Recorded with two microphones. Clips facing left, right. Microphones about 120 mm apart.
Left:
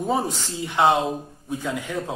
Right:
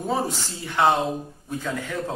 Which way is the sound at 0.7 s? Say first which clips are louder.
Left 1 dB; 20° left (ahead or behind).